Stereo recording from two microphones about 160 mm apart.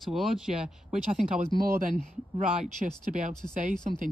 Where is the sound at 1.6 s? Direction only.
65° right (ahead or behind).